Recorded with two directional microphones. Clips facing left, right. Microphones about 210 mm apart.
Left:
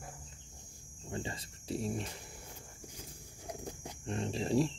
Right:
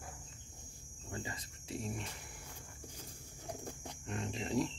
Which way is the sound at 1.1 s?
30° left (ahead or behind).